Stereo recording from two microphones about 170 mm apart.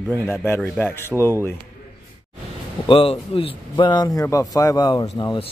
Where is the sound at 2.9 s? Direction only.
30° left (ahead or behind).